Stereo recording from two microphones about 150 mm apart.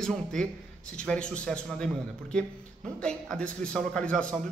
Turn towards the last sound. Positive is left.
turn(degrees=5)  # may be behind; listen again after turning